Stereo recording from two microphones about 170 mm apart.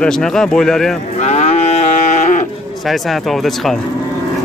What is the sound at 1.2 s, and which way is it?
Livestock, 40° left (ahead or behind).